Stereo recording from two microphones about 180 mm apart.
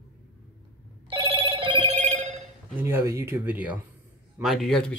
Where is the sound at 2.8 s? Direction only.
15° right (ahead or behind).